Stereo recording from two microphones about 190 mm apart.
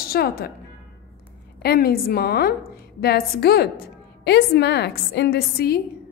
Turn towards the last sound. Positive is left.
turn(degrees=55)  # may be behind; listen again after turning